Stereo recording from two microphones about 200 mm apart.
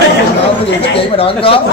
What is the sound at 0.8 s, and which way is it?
Speech, 30° left (ahead or behind).